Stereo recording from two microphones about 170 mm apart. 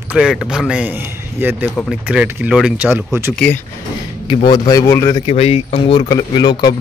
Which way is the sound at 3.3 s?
10° left (ahead or behind).